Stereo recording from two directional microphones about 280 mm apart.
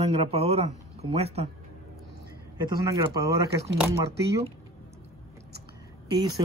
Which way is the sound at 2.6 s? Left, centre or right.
Centre.